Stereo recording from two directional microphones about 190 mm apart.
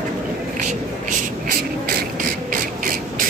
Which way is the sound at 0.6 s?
45° right (ahead or behind).